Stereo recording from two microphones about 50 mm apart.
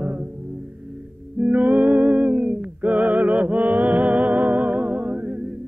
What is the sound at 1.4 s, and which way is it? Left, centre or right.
Music, right.